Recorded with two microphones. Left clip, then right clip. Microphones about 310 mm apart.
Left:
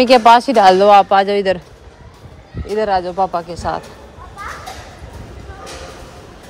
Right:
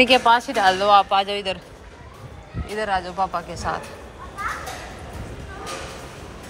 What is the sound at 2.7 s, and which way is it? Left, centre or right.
Speech, left.